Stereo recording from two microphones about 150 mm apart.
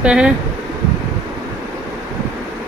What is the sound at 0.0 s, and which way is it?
Speech, 5° right (ahead or behind).